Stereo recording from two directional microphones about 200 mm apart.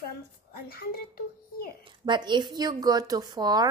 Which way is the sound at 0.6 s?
45° left (ahead or behind).